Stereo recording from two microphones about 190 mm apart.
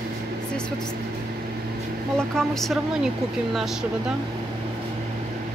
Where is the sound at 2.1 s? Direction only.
Centre (ahead or behind).